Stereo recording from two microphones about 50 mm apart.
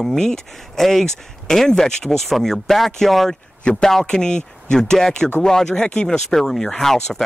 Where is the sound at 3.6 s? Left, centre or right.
Centre.